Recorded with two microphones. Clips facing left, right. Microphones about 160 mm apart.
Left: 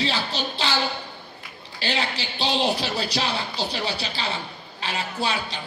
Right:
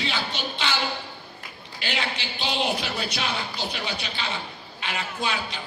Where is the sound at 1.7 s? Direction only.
35° left (ahead or behind).